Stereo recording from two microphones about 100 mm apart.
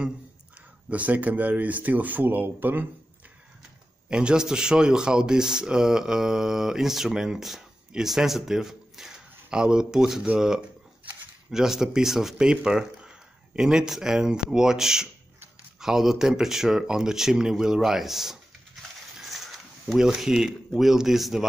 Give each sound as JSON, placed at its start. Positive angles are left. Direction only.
{"t": 0.8, "sound": "speech", "side_deg": -15}
{"t": 4.1, "sound": "speech", "side_deg": -10}